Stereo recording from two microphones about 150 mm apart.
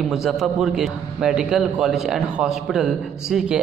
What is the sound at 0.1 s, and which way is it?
A man's voice, 5° right (ahead or behind).